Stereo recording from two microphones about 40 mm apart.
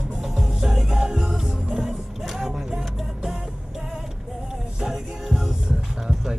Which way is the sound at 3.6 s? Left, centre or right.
Centre.